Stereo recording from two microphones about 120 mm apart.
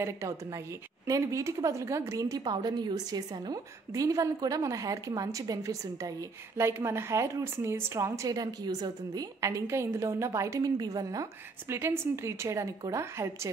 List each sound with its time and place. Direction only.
0.0 s speech: 25° right (ahead or behind)